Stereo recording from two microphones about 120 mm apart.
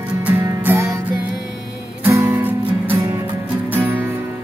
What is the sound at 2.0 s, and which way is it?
Music, 20° right (ahead or behind).